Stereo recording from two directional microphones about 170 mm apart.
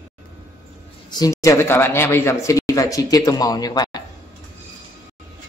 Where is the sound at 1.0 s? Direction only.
25° left (ahead or behind).